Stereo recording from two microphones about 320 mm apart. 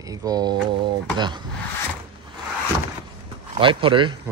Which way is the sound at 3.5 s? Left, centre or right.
Centre.